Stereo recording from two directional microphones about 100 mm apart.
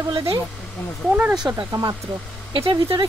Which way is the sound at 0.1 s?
65° right (ahead or behind).